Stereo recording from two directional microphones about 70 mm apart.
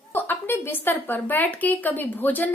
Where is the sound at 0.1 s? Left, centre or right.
Left.